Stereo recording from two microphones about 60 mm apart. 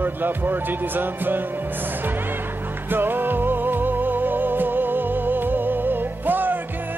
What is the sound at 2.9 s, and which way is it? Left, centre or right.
Music, right.